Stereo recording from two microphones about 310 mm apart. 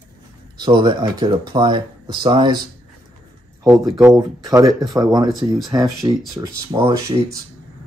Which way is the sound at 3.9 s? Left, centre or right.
Centre.